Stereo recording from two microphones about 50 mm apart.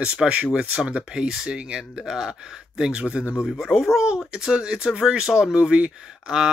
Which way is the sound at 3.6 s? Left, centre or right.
Centre.